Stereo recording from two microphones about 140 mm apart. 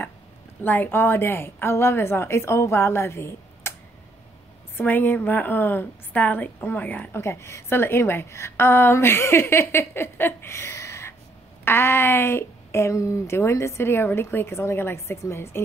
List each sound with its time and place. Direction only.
0.7 s a woman's voice: 15° left (ahead or behind)
4.7 s a woman's voice: 15° left (ahead or behind)